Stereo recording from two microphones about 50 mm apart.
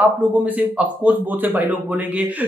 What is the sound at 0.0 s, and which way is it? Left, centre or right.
Speech, right.